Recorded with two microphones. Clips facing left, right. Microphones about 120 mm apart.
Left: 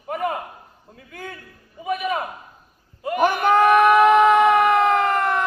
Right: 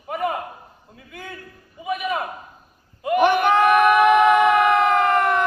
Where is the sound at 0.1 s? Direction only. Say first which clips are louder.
Even; 40° left (ahead or behind).